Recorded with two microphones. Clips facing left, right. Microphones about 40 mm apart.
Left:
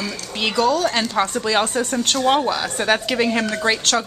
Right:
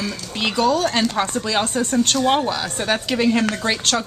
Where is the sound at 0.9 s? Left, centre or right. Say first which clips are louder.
Even; centre.